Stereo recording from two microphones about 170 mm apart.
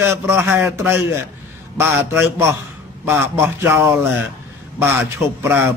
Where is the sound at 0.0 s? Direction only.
15° right (ahead or behind).